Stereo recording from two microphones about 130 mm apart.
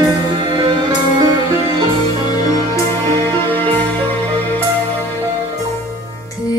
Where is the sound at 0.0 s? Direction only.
35° right (ahead or behind).